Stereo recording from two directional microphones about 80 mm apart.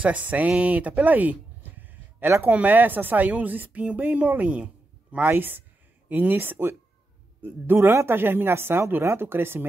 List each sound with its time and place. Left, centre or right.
0.0 s speech: centre